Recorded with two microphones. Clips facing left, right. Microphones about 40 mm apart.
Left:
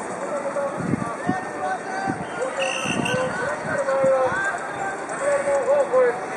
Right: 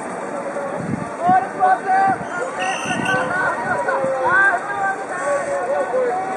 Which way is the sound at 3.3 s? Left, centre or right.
Centre.